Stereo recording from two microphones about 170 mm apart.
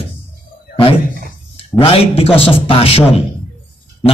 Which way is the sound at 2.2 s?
35° left (ahead or behind).